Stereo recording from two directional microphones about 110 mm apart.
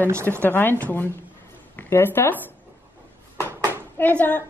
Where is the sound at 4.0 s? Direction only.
15° left (ahead or behind).